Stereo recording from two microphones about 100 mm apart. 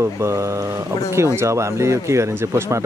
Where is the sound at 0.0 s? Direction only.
25° right (ahead or behind).